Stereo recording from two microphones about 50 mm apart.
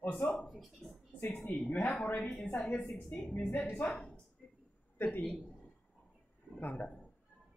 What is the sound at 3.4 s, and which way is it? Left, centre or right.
Speech, left.